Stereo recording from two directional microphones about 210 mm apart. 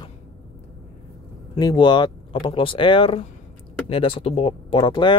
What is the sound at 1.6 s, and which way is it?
Speech, 20° left (ahead or behind).